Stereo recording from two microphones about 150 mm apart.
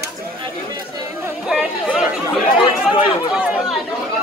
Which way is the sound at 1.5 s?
5° right (ahead or behind).